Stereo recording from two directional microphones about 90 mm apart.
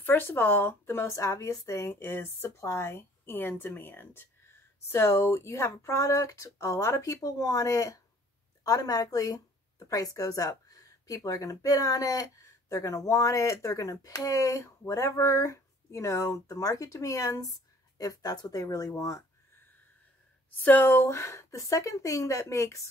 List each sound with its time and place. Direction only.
0.0 s a woman's voice: 25° left (ahead or behind)
20.6 s speech: 20° left (ahead or behind)